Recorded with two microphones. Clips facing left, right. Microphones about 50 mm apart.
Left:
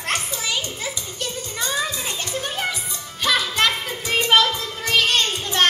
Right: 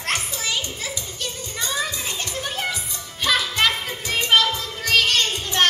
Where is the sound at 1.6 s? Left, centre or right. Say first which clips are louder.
Left 1 dB; centre.